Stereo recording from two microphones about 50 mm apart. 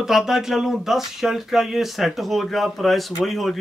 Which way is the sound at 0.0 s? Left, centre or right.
Centre.